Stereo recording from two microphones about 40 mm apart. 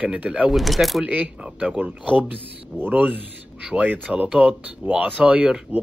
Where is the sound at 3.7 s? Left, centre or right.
Right.